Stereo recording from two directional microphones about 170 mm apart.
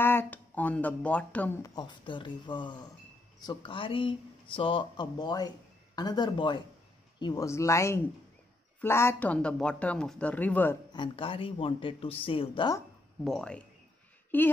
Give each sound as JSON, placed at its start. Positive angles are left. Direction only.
{"t": 0.0, "sound": "speech", "side_deg": 10}
{"t": 1.6, "sound": "speech", "side_deg": 25}
{"t": 10.9, "sound": "speech", "side_deg": 30}
{"t": 13.2, "sound": "a man's voice", "side_deg": 5}